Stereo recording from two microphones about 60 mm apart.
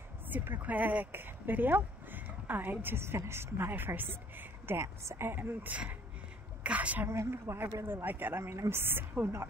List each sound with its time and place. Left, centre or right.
0.3 s speech: right
5.0 s a woman's voice: right
5.3 s speech: right
6.6 s a woman's voice: right
7.1 s a woman's voice: right
7.8 s speech: right
8.5 s a woman's voice: right